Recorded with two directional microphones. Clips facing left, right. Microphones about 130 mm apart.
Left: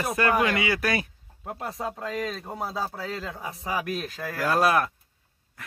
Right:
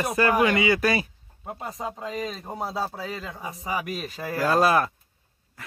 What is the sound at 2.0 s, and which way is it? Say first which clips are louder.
Speech: even; 10° right (ahead or behind).